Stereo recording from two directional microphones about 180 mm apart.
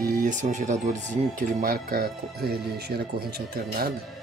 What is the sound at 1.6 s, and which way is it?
Speech, 55° right (ahead or behind).